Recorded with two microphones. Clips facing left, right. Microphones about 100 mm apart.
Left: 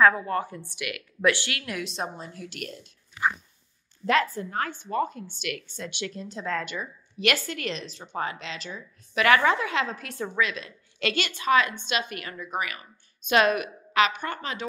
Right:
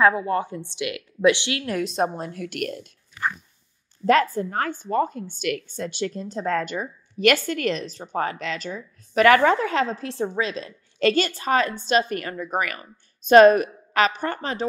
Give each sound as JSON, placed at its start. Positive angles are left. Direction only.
{"t": 0.0, "sound": "a woman's voice", "side_deg": -20}
{"t": 1.7, "sound": "a woman's voice", "side_deg": -40}
{"t": 4.0, "sound": "a woman's voice", "side_deg": -40}